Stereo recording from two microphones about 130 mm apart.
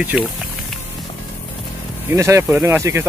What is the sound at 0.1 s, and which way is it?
Speech, 5° right (ahead or behind).